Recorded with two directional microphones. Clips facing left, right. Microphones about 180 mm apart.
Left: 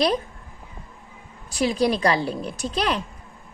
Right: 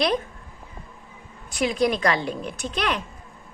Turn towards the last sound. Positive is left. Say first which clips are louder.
# left 2 dB
turn(degrees=35)  # may be behind; listen again after turning